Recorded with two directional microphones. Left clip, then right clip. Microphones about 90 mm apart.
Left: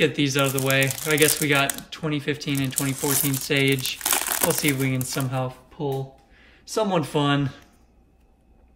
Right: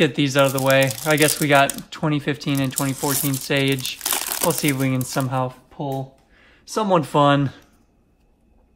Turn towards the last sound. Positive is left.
turn(degrees=-25)  # may be behind; listen again after turning